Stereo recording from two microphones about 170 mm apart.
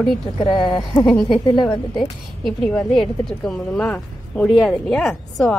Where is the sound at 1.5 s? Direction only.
25° left (ahead or behind).